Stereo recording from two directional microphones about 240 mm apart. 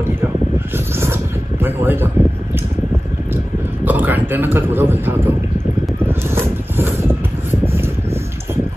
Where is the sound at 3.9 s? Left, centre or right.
Centre.